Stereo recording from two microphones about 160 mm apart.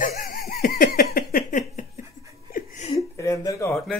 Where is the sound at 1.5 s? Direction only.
45° left (ahead or behind).